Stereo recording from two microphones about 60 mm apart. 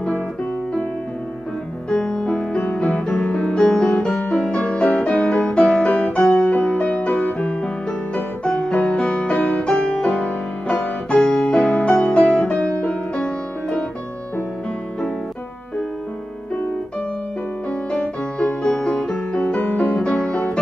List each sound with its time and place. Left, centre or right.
1.9 s music: centre
18.5 s music: centre